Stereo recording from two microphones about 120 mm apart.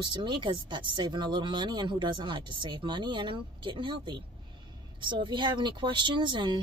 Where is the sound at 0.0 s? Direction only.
40° right (ahead or behind).